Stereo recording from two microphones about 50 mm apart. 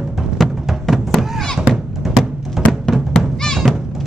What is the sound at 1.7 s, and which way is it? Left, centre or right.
Music, centre.